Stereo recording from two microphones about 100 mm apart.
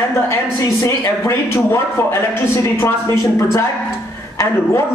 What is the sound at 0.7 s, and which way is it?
A man's voice, 30° left (ahead or behind).